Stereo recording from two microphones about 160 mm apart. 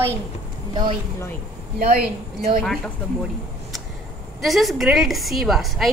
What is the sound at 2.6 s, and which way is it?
Speech, centre (ahead or behind).